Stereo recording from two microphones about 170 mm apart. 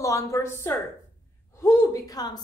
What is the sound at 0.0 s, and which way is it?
A woman's voice, 20° left (ahead or behind).